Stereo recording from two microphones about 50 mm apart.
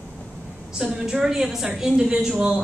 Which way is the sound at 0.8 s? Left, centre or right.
Centre.